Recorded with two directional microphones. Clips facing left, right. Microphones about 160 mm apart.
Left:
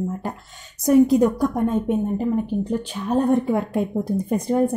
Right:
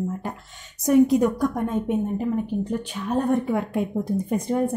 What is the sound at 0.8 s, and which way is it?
A woman's voice, 35° left (ahead or behind).